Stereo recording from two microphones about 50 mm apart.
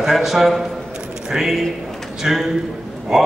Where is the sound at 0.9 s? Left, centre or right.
Centre.